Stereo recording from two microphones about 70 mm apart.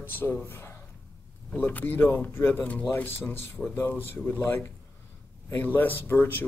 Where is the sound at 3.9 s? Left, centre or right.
Left.